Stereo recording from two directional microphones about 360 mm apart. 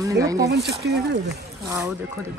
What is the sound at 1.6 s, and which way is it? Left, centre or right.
Speech, centre.